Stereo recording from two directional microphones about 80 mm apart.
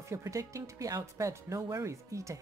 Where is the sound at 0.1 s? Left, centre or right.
Right.